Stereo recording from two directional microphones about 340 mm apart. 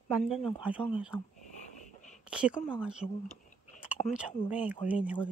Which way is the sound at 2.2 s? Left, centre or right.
Centre.